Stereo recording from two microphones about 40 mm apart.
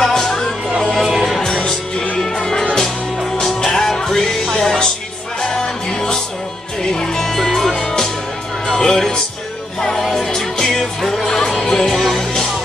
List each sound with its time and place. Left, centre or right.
0.0 s music: centre